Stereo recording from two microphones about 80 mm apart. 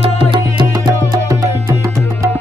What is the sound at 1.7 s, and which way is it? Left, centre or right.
Music, right.